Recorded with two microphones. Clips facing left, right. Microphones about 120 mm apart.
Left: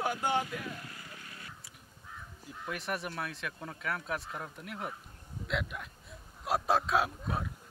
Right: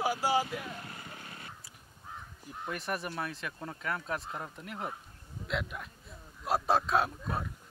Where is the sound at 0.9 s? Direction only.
30° right (ahead or behind).